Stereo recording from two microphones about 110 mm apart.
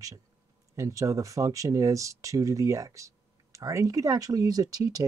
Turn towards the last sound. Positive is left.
turn(degrees=-35)  # may be behind; listen again after turning